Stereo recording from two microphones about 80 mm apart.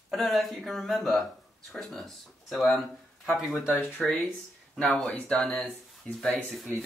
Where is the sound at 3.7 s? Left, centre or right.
Left.